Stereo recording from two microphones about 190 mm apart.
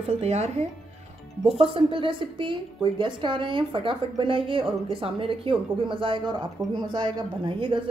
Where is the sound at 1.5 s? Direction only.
30° right (ahead or behind).